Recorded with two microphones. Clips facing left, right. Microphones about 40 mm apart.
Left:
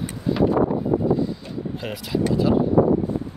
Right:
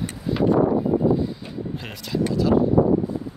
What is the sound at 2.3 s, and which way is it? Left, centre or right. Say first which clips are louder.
Speech: even; left.